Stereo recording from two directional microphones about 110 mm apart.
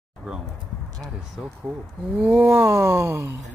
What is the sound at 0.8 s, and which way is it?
Speech, 30° right (ahead or behind).